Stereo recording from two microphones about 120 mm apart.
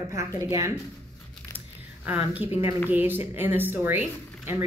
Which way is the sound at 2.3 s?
15° right (ahead or behind).